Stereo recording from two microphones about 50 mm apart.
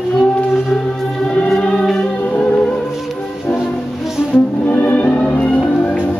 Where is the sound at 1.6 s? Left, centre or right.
Centre.